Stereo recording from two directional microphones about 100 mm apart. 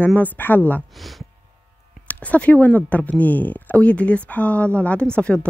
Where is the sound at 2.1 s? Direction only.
15° left (ahead or behind).